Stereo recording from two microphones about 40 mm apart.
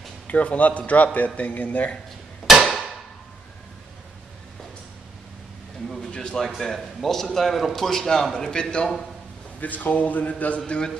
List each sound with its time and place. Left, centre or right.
0.3 s a man's voice: left
2.4 s hammer: centre
5.9 s a sound: centre
6.4 s a man's voice: centre; by 8.8 s left
9.6 s speech: left